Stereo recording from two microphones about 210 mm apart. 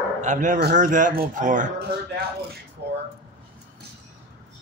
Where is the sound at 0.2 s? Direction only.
35° right (ahead or behind).